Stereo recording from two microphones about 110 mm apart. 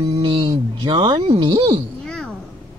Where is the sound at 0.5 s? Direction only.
45° right (ahead or behind).